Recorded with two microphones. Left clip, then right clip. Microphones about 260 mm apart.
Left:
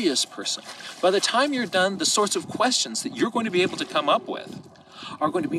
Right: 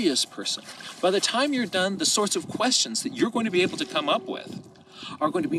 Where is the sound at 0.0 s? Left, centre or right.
Centre.